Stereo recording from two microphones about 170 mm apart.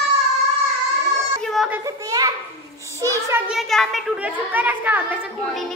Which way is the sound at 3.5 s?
Centre (ahead or behind).